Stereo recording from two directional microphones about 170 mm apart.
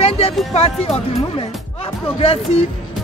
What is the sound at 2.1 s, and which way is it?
Speech, 35° left (ahead or behind).